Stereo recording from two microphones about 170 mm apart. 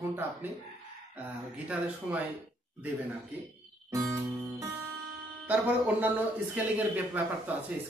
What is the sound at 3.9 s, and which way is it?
A man's voice, 20° right (ahead or behind).